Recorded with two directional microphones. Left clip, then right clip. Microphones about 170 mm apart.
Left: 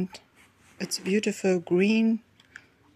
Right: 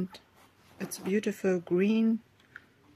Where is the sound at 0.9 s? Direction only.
20° right (ahead or behind).